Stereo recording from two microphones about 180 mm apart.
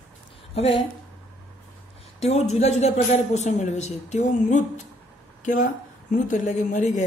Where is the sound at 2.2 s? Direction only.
35° left (ahead or behind).